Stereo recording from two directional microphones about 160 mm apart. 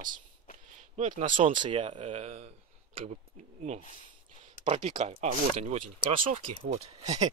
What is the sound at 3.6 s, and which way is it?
Speech, 45° right (ahead or behind).